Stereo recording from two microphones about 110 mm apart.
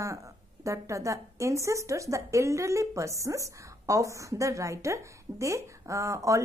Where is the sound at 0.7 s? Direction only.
30° right (ahead or behind).